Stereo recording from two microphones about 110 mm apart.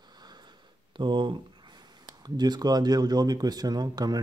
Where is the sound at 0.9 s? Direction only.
45° right (ahead or behind).